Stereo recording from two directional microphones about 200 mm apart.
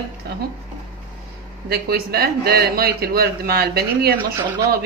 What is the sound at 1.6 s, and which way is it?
A man's voice, 50° right (ahead or behind).